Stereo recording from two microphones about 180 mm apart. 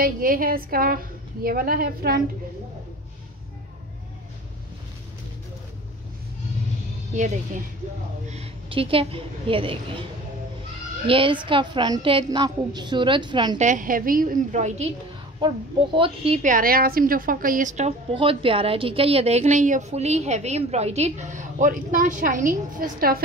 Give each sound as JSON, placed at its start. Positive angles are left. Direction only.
{"t": 0.0, "sound": "a woman's voice", "side_deg": -50}
{"t": 8.3, "sound": "a woman's voice", "side_deg": -35}
{"t": 11.1, "sound": "a woman's voice", "side_deg": -30}
{"t": 13.6, "sound": "a woman's voice", "side_deg": -45}
{"t": 15.4, "sound": "a woman's voice", "side_deg": -30}
{"t": 16.4, "sound": "a woman's voice", "side_deg": -50}